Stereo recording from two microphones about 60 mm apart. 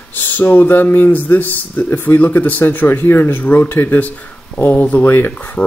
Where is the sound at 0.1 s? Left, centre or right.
Left.